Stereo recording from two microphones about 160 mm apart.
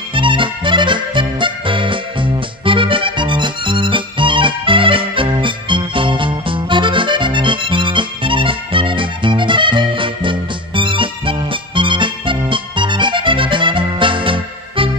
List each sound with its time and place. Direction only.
0.1 s music: 30° right (ahead or behind)